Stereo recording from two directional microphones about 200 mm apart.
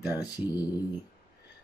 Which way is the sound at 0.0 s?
10° right (ahead or behind).